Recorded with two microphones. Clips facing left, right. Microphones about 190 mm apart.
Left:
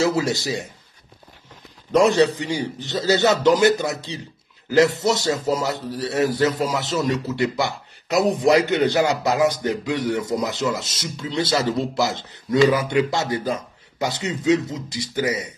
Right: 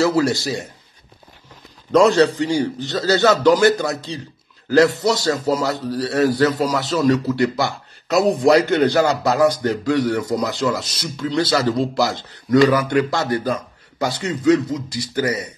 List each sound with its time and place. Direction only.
0.0 s a man's voice: 20° left (ahead or behind)
1.9 s a man's voice: 20° left (ahead or behind)